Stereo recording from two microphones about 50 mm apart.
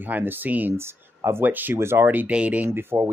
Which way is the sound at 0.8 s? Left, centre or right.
Right.